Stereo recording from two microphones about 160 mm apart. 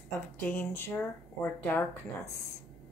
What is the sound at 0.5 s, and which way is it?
Speech, 15° left (ahead or behind).